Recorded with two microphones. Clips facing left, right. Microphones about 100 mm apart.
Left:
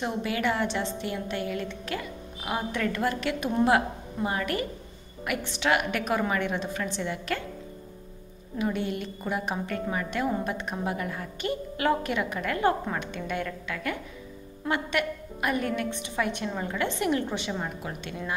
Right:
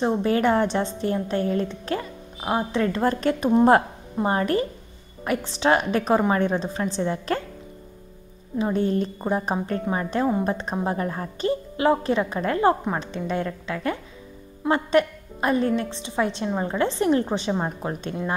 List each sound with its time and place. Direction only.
0.0 s a woman's voice: 35° right (ahead or behind)
8.5 s a woman's voice: 35° right (ahead or behind)
11.7 s a woman's voice: 25° right (ahead or behind)